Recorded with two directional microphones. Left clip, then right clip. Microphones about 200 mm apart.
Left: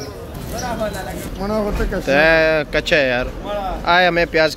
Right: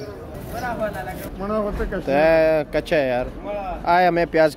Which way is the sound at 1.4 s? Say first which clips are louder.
Left 3 dB; 30° right (ahead or behind).